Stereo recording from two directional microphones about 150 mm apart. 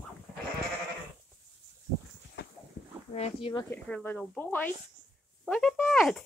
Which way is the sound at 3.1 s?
45° left (ahead or behind).